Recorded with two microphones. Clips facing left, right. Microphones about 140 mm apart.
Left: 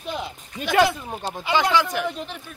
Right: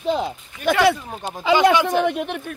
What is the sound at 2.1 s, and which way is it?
Speech, 60° right (ahead or behind).